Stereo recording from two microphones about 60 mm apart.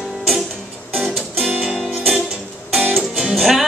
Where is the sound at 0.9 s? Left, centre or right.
Centre.